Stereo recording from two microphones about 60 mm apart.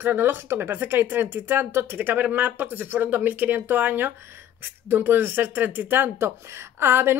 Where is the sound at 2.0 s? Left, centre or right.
Right.